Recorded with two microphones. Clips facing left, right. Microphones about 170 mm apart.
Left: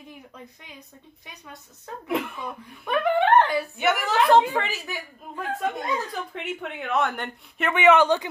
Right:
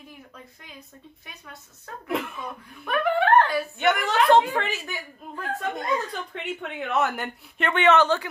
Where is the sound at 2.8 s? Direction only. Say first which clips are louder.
Left 1 dB; 20° left (ahead or behind).